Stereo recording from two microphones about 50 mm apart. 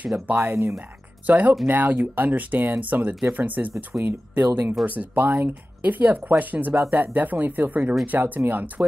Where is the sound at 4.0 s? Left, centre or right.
Right.